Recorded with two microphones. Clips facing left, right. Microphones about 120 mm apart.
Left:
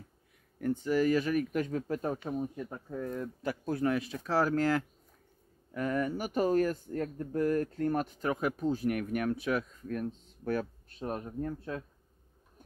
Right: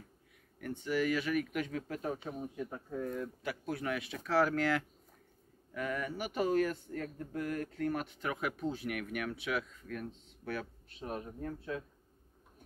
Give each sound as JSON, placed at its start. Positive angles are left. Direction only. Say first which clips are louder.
{"t": 0.6, "sound": "speech", "louder": "left 5 dB", "side_deg": 35}
{"t": 3.2, "sound": "speech", "louder": "left 3 dB", "side_deg": 35}